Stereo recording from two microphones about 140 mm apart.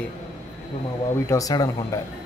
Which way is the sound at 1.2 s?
25° left (ahead or behind).